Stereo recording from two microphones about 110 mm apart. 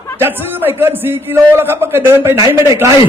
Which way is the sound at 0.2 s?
20° right (ahead or behind).